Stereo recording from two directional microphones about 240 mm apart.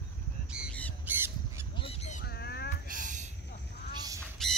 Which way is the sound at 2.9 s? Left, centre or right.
Right.